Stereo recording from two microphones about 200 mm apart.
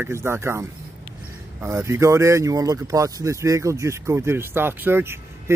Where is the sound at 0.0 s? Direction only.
10° right (ahead or behind).